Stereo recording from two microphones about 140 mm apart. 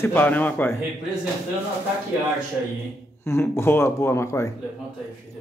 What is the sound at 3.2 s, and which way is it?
Speech, 20° left (ahead or behind).